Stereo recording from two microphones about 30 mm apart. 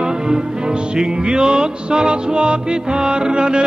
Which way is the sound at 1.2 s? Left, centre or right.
Right.